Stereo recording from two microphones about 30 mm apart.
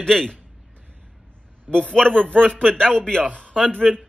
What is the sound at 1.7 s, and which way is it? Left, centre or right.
A man's voice, left.